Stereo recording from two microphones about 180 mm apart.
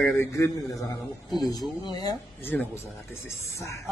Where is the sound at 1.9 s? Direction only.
20° left (ahead or behind).